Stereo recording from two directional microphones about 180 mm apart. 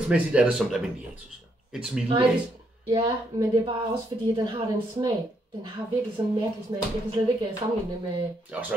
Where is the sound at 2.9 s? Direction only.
25° right (ahead or behind).